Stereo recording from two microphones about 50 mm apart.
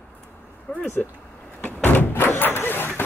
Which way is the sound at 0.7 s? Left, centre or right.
Left.